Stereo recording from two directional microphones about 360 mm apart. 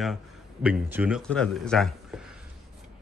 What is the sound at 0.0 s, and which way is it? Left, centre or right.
Speech, centre.